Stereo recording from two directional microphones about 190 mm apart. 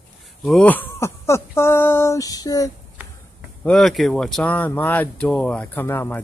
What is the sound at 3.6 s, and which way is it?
Speech, centre (ahead or behind).